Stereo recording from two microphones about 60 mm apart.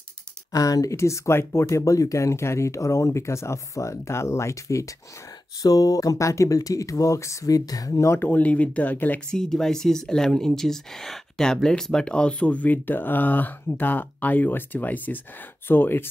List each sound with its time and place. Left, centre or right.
0.5 s speech: left
5.6 s speech: left
7.5 s speech: left
8.2 s speech: left
9.3 s speech: centre; by 16.1 s left